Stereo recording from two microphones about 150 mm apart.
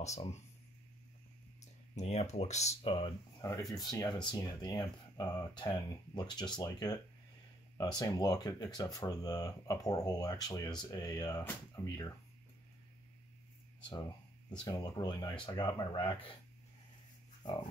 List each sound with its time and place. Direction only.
0.0 s speech: 50° left (ahead or behind)
1.6 s speech: 50° left (ahead or behind)
3.4 s speech: 20° left (ahead or behind)
14.6 s speech: 25° left (ahead or behind)